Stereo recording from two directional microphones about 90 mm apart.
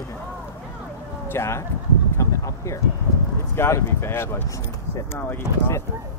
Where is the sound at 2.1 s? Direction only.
30° left (ahead or behind).